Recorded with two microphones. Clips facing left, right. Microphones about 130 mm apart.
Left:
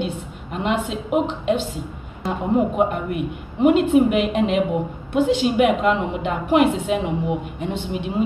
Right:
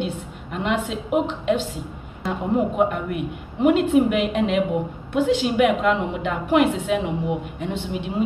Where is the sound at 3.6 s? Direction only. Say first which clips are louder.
Left 2 dB; 20° left (ahead or behind).